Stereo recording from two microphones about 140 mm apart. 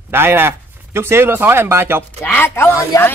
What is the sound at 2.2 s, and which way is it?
Speech, 15° left (ahead or behind).